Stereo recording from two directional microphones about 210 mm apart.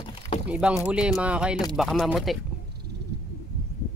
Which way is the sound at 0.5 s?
5° right (ahead or behind).